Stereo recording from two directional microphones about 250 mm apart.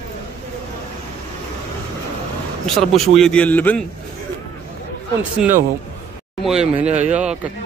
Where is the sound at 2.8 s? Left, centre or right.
Centre.